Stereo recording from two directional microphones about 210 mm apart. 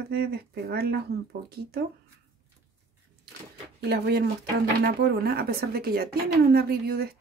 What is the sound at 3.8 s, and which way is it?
Speech, 50° right (ahead or behind).